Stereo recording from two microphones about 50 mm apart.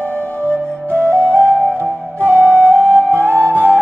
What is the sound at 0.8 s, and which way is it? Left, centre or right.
Flute, right.